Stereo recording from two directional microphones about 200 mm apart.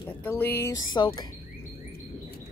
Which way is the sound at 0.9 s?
20° left (ahead or behind).